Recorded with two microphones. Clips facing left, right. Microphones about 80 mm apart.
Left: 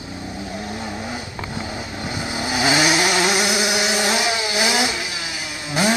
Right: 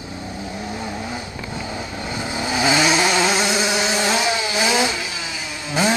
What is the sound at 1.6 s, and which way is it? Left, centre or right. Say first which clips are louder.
Vehicle: right 1 dB; centre.